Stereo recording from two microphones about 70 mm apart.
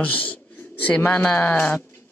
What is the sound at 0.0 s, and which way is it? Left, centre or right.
Speech, left.